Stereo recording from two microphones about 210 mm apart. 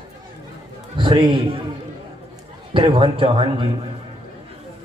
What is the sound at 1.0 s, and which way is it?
Speech, 20° right (ahead or behind).